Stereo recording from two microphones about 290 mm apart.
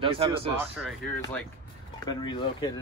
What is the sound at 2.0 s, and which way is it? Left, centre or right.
Speech, centre.